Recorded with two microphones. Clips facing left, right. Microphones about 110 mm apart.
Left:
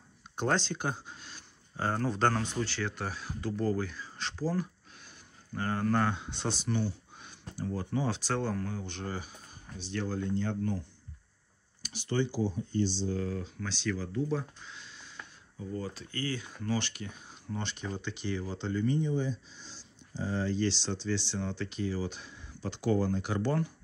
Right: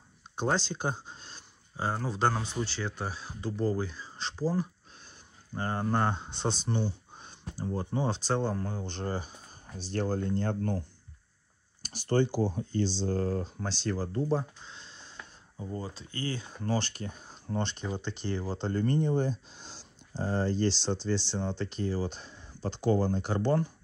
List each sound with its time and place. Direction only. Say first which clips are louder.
0.4 s speech: even; 10° right (ahead or behind); by 1.4 s 25° right (ahead or behind)
1.8 s speech: left 1 dB; 10° right (ahead or behind); by 6.5 s 30° right (ahead or behind)
6.6 s a sound: even; 25° right (ahead or behind)
7.5 s speech: right 1 dB; 25° right (ahead or behind)
9.8 s speech: right 3 dB; 40° right (ahead or behind)
11.8 s speech: right 4 dB; 40° right (ahead or behind)
12.5 s speech: even; 90° right
13.1 s speech: right 4 dB; 40° right (ahead or behind)